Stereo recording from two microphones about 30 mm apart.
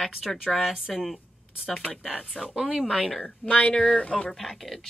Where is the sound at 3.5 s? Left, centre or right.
Left.